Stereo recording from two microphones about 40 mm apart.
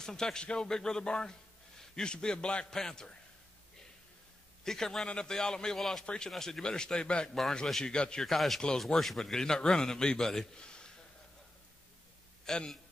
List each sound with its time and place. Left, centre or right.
0.0 s a man's voice: centre
4.6 s a man's voice: centre
6.0 s a man's voice: centre
6.3 s a man's voice: centre
6.6 s a man's voice: centre
7.6 s a man's voice: centre
7.9 s a man's voice: left
8.3 s speech: centre
8.5 s a man's voice: centre
8.8 s a man's voice: centre
10.6 s a sound: left
12.5 s a man's voice: centre